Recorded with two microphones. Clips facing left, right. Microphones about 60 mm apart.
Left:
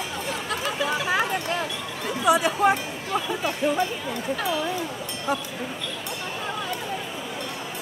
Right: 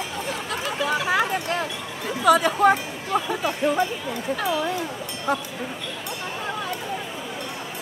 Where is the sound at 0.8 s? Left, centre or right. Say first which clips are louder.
Right 3 dB; right.